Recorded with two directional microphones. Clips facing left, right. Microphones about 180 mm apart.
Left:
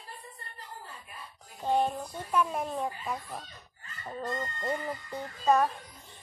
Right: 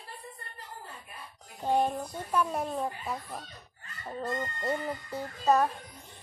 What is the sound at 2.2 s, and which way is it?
A child's voice, 10° left (ahead or behind).